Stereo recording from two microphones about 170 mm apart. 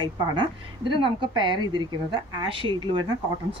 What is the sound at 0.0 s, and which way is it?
A woman's voice, 30° right (ahead or behind).